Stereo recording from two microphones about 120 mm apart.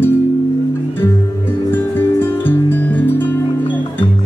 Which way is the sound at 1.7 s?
15° left (ahead or behind).